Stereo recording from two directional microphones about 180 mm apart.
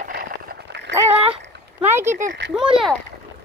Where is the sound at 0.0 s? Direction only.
60° right (ahead or behind).